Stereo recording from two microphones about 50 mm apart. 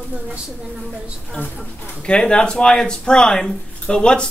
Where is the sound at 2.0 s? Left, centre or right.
Left.